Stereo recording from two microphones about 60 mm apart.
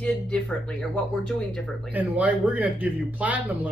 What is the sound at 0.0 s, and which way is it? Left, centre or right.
Speech, centre.